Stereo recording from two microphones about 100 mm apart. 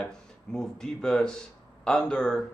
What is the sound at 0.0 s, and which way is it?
Speech, 5° left (ahead or behind).